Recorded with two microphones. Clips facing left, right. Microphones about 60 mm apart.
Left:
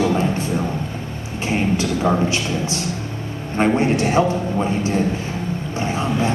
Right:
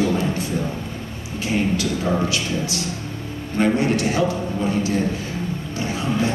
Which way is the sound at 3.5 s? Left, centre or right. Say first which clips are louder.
Left 2 dB; left.